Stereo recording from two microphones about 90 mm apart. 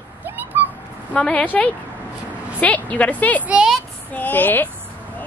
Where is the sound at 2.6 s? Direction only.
15° left (ahead or behind).